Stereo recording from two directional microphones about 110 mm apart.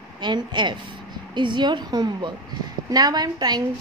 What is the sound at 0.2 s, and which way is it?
A woman's voice, 45° right (ahead or behind).